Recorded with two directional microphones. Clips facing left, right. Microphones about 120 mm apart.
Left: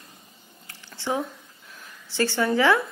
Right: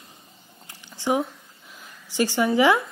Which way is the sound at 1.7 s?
15° right (ahead or behind).